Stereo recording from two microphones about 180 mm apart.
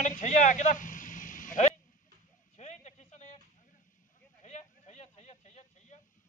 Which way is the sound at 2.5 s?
40° left (ahead or behind).